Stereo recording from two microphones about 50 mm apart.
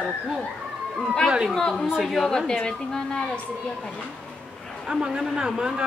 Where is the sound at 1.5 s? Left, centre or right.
Centre.